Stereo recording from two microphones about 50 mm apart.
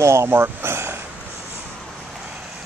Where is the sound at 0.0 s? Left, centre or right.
Right.